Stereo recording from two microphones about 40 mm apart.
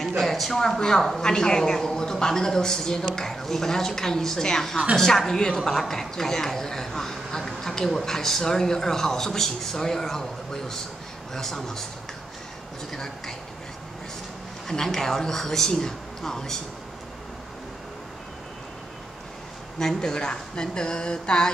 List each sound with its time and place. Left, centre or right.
0.0 s speech: centre
14.7 s speech: centre
19.8 s speech: centre